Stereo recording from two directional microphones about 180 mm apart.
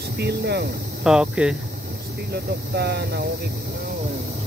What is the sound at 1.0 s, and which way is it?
Speech, 5° right (ahead or behind).